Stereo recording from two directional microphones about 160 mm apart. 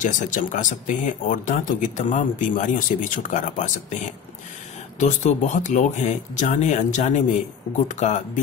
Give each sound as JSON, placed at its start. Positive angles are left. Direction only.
{"t": 0.0, "sound": "speech", "side_deg": 55}